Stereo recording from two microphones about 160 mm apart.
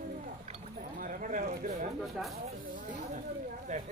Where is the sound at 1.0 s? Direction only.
55° right (ahead or behind).